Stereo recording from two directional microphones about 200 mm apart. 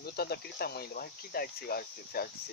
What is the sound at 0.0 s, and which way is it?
Speech, 50° left (ahead or behind).